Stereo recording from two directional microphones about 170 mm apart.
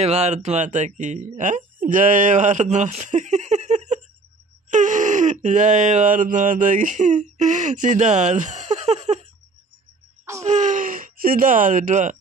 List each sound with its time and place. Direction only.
0.0 s speech: 40° right (ahead or behind)
10.4 s speech: 45° right (ahead or behind)